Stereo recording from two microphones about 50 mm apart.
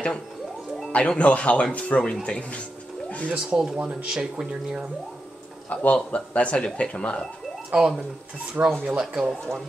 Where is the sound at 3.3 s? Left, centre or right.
Centre.